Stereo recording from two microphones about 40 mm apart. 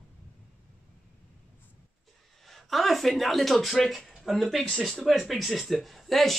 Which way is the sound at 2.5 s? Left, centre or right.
Centre.